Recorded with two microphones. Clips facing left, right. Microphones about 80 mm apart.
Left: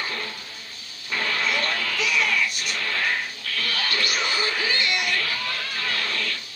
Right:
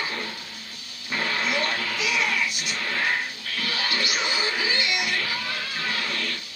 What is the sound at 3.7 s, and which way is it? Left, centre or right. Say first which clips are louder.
Music: even; centre.